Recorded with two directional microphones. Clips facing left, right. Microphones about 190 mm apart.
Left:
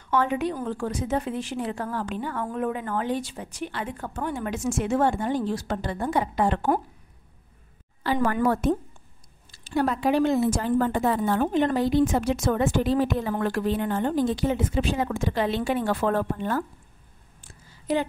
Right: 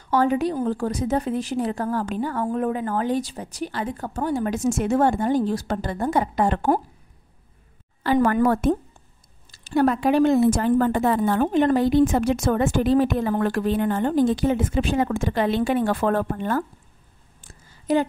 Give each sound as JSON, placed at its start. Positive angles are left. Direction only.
{"t": 0.1, "sound": "a woman's voice", "side_deg": -40}
{"t": 8.0, "sound": "a woman's voice", "side_deg": -55}
{"t": 17.4, "sound": "a sound", "side_deg": -45}